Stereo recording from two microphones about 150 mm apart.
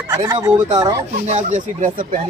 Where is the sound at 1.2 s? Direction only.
55° right (ahead or behind).